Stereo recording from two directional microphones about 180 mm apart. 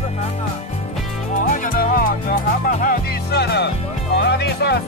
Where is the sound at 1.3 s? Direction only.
45° left (ahead or behind); by 4.7 s 65° left (ahead or behind).